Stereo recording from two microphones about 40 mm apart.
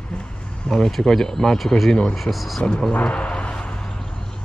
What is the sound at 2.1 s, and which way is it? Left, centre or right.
Speech, centre.